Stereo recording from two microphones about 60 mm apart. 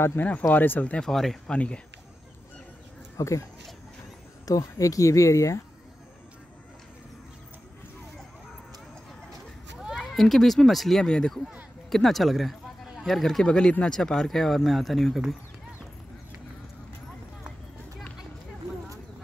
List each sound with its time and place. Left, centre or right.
0.2 s speech: left
1.0 s speech: centre
1.5 s speech: centre
3.2 s speech: left
4.5 s speech: left
9.8 s speech: centre